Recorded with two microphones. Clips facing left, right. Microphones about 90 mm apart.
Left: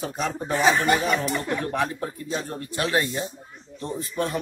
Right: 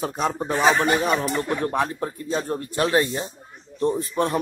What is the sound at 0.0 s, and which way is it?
Speech, 35° right (ahead or behind).